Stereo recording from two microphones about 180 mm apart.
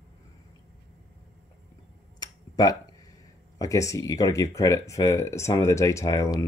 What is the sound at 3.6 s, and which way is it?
Speech, 20° left (ahead or behind).